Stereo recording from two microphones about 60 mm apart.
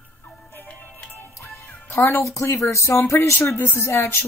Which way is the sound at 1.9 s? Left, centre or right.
Left.